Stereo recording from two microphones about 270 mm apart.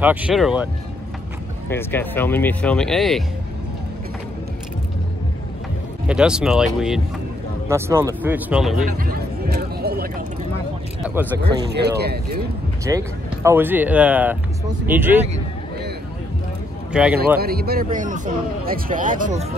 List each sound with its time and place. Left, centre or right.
0.0 s speech: centre
1.7 s speech: centre
6.0 s speech: centre
8.7 s a sound: right
11.7 s a man's voice: right
12.8 s speech: centre
16.9 s speech: centre
17.4 s a man's voice: right